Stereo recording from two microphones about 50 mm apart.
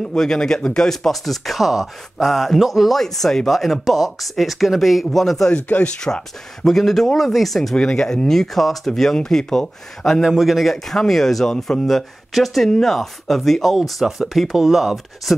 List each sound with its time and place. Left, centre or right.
0.1 s speech: centre
0.8 s speech: centre
5.5 s speech: left
5.9 s speech: centre
10.2 s speech: centre